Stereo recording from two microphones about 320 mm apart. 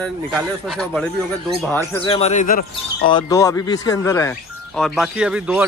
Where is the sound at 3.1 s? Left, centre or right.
Centre.